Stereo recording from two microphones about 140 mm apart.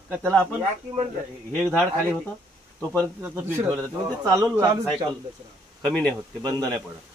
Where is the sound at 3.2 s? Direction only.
15° right (ahead or behind).